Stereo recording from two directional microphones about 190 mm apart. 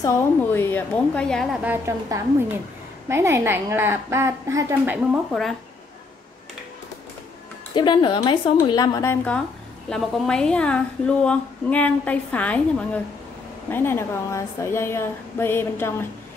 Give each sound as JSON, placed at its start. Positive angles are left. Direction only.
{"t": 0.0, "sound": "a woman's voice", "side_deg": 15}
{"t": 5.3, "sound": "a woman's voice", "side_deg": 0}
{"t": 7.7, "sound": "a woman's voice", "side_deg": 25}